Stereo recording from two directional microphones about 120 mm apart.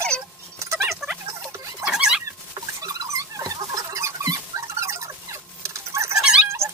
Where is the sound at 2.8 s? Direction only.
30° right (ahead or behind).